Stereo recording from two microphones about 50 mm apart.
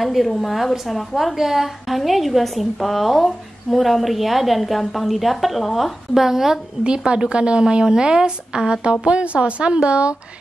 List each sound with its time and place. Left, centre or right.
0.0 s a woman's voice: centre
7.1 s a woman's voice: centre